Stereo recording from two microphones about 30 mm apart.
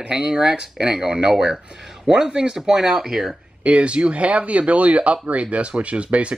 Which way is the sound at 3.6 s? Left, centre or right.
Right.